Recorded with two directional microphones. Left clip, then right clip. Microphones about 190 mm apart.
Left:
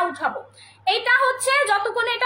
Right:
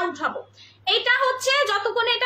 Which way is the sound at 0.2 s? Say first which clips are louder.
Left 2 dB; 20° right (ahead or behind).